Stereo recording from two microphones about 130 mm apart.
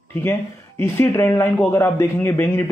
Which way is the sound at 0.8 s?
20° left (ahead or behind).